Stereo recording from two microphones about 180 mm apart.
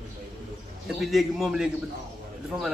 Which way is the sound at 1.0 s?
Centre (ahead or behind).